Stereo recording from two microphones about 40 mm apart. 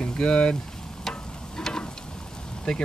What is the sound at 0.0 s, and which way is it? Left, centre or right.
Speech, left.